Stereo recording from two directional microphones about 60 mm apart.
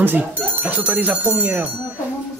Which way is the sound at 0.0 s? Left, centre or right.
Right.